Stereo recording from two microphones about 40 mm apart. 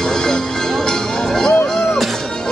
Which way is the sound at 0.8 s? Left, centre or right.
Centre.